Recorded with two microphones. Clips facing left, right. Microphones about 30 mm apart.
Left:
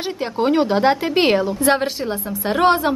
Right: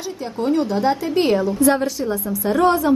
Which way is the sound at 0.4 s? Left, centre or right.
Left.